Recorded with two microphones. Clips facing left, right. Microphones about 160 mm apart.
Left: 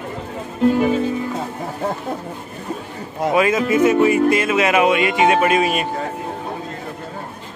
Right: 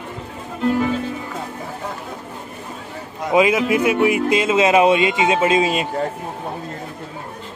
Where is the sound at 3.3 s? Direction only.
15° right (ahead or behind).